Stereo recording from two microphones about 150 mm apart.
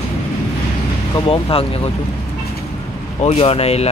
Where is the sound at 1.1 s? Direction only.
40° left (ahead or behind).